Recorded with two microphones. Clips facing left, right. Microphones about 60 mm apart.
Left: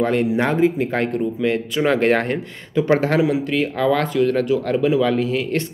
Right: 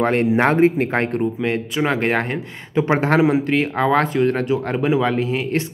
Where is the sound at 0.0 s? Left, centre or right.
Right; by 2.4 s centre.